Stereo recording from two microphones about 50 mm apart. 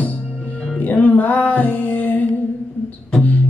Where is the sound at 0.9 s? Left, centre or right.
Left.